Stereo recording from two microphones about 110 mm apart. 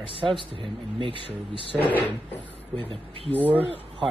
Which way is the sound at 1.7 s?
15° left (ahead or behind).